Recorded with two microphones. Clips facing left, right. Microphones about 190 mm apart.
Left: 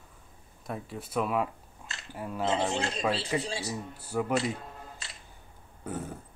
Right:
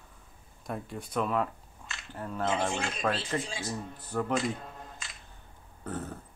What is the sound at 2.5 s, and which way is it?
Speech, 20° left (ahead or behind).